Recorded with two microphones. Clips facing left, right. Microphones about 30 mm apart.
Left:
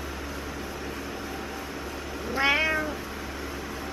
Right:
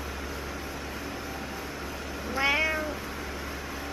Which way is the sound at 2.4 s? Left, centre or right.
Centre.